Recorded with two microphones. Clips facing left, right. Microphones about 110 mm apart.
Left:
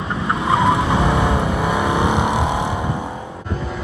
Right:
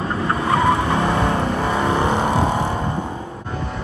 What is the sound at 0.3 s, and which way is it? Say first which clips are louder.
Vehicle: left 1 dB; 15° left (ahead or behind).